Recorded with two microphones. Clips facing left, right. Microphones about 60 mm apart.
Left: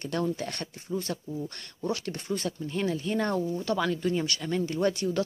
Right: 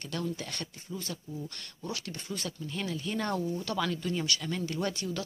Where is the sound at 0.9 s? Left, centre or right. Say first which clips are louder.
Left 9 dB; left.